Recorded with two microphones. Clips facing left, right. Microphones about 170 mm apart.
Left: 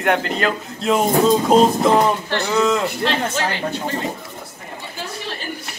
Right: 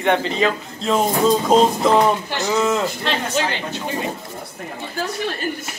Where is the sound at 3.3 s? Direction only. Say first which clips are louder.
Even; 20° right (ahead or behind).